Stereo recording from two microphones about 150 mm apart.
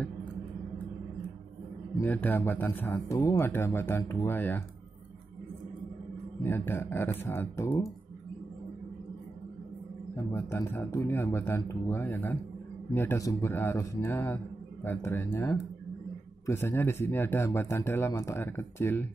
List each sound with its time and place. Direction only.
2.0 s speech: 10° left (ahead or behind)
6.4 s speech: 15° left (ahead or behind)
10.1 s speech: 20° left (ahead or behind)